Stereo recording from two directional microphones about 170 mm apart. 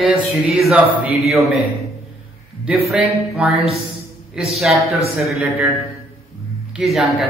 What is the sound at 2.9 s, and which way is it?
Speech, 5° right (ahead or behind).